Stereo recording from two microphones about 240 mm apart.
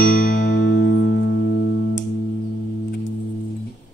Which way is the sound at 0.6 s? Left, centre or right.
Left.